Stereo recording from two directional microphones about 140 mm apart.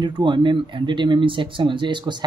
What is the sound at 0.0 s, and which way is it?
Speech, 35° right (ahead or behind).